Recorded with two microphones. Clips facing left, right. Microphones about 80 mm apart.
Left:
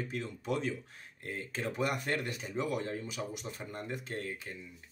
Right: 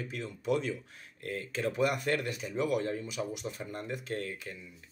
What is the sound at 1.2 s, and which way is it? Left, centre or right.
Speech, left.